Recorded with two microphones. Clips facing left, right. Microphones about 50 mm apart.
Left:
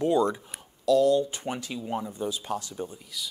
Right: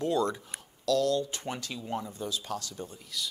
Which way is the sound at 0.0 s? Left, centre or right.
Centre.